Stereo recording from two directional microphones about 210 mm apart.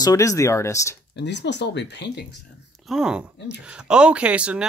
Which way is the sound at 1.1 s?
55° left (ahead or behind).